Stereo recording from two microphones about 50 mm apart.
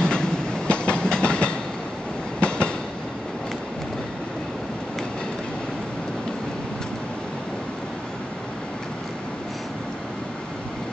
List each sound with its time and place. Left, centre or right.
0.0 s train: centre